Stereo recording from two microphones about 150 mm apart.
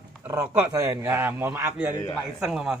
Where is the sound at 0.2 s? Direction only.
15° right (ahead or behind).